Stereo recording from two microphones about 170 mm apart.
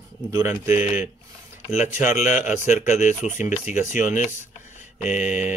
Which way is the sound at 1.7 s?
45° left (ahead or behind).